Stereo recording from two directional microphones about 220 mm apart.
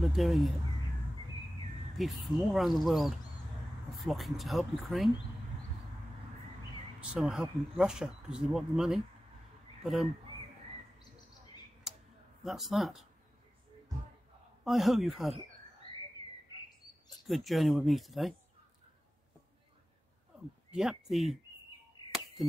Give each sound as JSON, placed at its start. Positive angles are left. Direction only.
{"t": 0.0, "sound": "speech", "side_deg": 0}
{"t": 2.0, "sound": "speech", "side_deg": 0}
{"t": 7.0, "sound": "speech", "side_deg": 0}
{"t": 11.9, "sound": "a sound", "side_deg": 0}
{"t": 12.4, "sound": "speech", "side_deg": 0}
{"t": 14.6, "sound": "speech", "side_deg": 0}
{"t": 15.9, "sound": "whistling", "side_deg": 25}
{"t": 17.1, "sound": "speech", "side_deg": 0}
{"t": 20.7, "sound": "speech", "side_deg": 0}
{"t": 22.4, "sound": "speech", "side_deg": 0}